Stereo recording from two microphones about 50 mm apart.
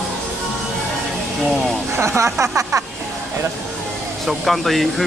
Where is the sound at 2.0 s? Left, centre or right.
Right.